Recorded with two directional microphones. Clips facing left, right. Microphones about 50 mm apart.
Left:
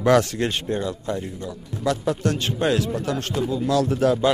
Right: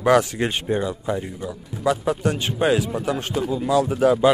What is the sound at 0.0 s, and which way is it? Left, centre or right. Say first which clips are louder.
Speech: right 1 dB; centre.